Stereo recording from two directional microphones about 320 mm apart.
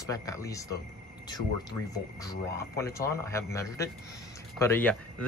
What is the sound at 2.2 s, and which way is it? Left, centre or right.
Speech, centre.